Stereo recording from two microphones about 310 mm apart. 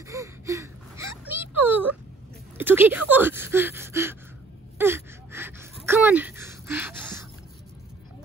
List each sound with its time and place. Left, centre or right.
0.1 s whimper: centre
2.5 s speech: centre
4.7 s gasp: centre